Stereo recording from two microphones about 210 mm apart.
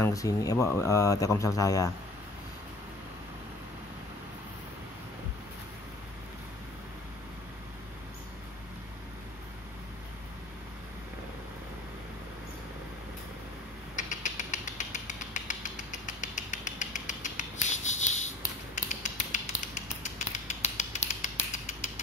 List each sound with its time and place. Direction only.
0.0 s speech: 15° left (ahead or behind)
13.9 s mechanisms: 35° left (ahead or behind)
18.8 s a sound: 35° left (ahead or behind)